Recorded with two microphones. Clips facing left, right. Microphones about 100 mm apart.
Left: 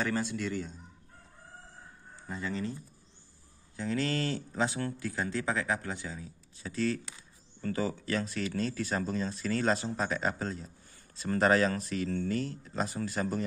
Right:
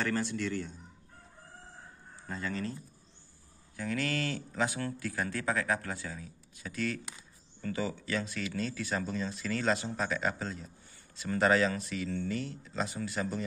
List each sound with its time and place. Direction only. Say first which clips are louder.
0.0 s a man's voice: even; 5° left (ahead or behind)
2.2 s speech: left 1 dB; 15° left (ahead or behind)
3.7 s speech: left 2 dB; 25° left (ahead or behind)